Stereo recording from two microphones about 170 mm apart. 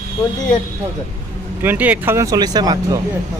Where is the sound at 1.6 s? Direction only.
10° right (ahead or behind).